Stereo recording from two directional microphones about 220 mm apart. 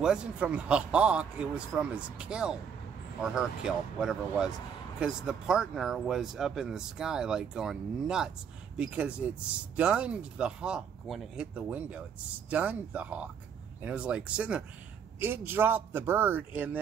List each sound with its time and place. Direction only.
0.0 s a man's voice: 5° right (ahead or behind)